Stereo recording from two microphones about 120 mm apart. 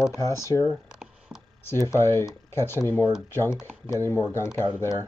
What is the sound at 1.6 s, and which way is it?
Speech, 25° left (ahead or behind).